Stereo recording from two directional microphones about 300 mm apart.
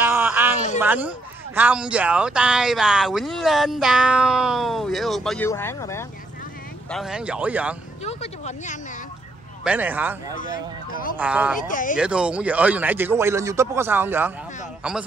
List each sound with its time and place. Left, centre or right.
0.0 s a sound: centre
0.7 s speech: centre
6.9 s speech: centre
8.0 s a sound: left
9.7 s speech: centre
10.3 s speech: left
11.1 s speech: centre
11.6 s speech: left
12.0 s a man's voice: centre